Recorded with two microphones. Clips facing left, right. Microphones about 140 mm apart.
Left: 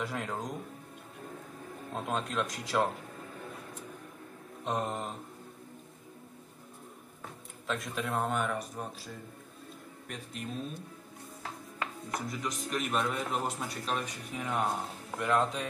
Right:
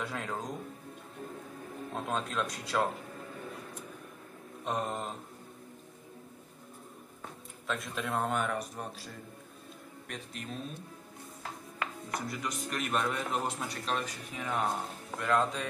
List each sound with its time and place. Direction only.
0.0 s music: centre (ahead or behind)
1.9 s a man's voice: centre (ahead or behind)
4.6 s a man's voice: centre (ahead or behind)
7.6 s a man's voice: centre (ahead or behind)
12.1 s a man's voice: centre (ahead or behind)